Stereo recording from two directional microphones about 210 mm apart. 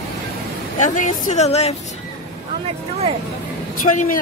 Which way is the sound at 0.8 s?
35° left (ahead or behind).